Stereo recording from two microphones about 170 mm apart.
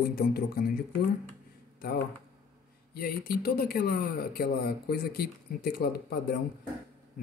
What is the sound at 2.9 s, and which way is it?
Speech, 60° left (ahead or behind).